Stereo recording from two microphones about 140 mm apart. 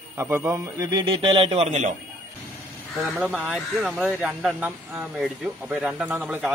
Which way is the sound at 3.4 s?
Centre (ahead or behind).